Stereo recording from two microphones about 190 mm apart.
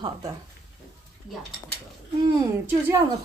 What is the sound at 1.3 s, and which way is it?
Speech, centre (ahead or behind).